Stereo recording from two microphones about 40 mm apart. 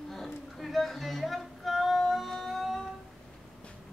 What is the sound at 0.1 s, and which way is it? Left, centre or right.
Music, centre.